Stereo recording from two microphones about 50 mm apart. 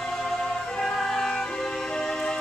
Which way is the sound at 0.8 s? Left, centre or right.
Centre.